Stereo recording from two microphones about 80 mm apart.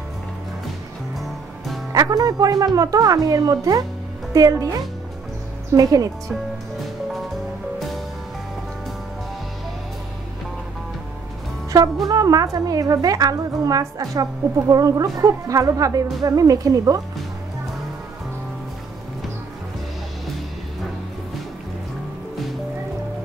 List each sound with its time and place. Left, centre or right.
1.9 s speech: right
12.1 s speech: right